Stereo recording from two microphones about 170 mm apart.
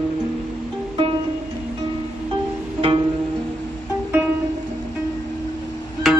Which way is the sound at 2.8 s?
30° right (ahead or behind).